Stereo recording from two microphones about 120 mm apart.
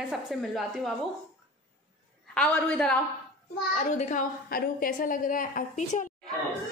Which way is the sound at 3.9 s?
90° left.